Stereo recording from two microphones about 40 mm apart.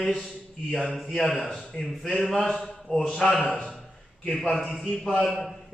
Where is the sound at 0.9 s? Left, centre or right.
Centre.